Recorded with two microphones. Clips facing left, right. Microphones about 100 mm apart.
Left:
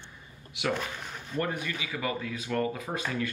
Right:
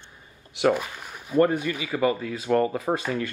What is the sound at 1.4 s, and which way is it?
Speech, 40° right (ahead or behind).